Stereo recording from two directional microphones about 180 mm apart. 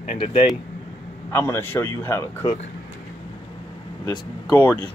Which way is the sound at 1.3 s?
15° left (ahead or behind).